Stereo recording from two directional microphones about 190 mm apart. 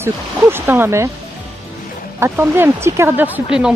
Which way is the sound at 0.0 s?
10° right (ahead or behind).